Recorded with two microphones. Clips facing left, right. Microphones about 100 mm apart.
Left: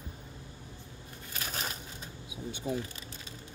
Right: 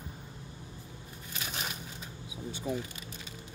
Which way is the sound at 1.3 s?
40° left (ahead or behind).